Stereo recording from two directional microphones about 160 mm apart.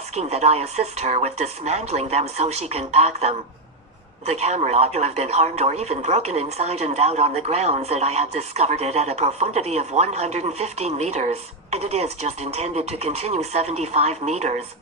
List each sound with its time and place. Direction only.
0.1 s speech: 40° right (ahead or behind)